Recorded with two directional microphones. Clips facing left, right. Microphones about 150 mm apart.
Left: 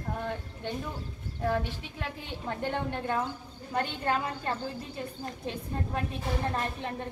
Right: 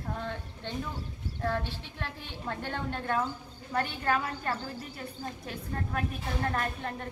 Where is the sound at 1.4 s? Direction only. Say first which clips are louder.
Left 3 dB; 15° left (ahead or behind).